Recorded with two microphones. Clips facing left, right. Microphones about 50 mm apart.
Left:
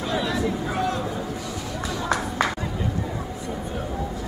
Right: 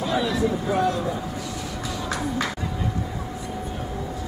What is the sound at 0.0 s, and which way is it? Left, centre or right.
Speech, centre.